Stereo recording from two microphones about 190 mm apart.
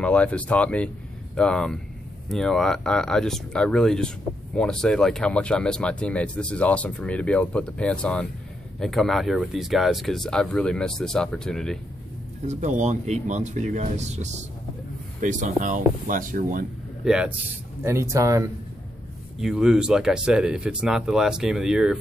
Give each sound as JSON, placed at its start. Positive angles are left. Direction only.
{"t": 0.0, "sound": "speech", "side_deg": 5}
{"t": 12.4, "sound": "speech", "side_deg": -40}
{"t": 17.0, "sound": "speech", "side_deg": -5}
{"t": 17.8, "sound": "speech", "side_deg": -15}
{"t": 19.4, "sound": "speech", "side_deg": -5}